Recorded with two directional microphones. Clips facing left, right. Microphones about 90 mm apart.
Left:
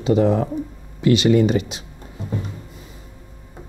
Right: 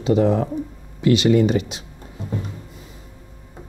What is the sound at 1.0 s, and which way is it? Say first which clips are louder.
Speech: even; 15° left (ahead or behind).